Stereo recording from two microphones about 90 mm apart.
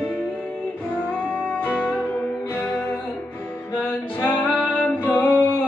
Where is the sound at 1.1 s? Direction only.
15° left (ahead or behind).